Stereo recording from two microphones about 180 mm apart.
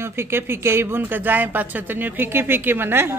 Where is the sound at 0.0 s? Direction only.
15° right (ahead or behind).